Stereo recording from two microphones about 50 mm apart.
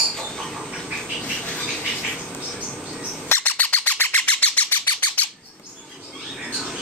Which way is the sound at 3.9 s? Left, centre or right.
Left.